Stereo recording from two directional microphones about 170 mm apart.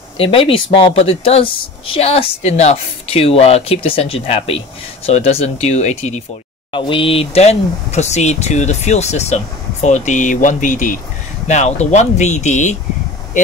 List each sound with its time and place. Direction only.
0.2 s speech: 35° left (ahead or behind)
6.7 s speech: 30° left (ahead or behind); by 12.7 s 45° left (ahead or behind)